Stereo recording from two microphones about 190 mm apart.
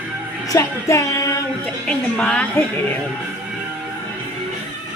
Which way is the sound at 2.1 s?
5° left (ahead or behind).